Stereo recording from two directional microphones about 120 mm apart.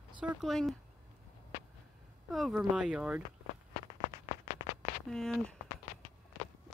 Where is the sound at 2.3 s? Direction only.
Centre (ahead or behind).